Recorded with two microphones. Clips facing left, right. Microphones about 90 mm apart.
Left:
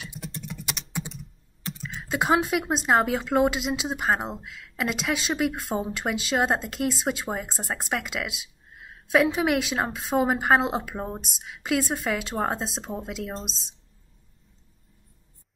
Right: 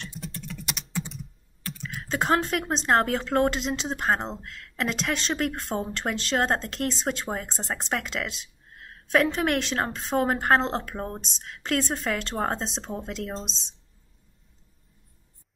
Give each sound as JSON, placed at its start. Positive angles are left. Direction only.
{"t": 0.3, "sound": "typing", "side_deg": 15}
{"t": 2.0, "sound": "a woman's voice", "side_deg": 10}